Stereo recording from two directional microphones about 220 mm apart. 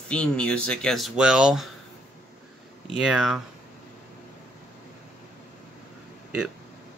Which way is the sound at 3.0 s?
5° right (ahead or behind).